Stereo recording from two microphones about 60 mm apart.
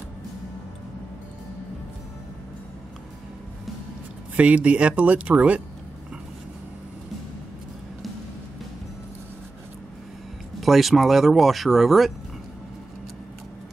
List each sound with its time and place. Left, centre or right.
4.4 s speech: right
10.6 s speech: centre